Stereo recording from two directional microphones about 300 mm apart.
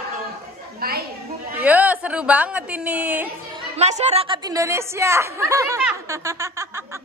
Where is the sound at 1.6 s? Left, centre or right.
Centre.